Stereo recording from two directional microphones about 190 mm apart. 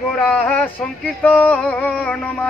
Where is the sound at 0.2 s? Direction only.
10° left (ahead or behind).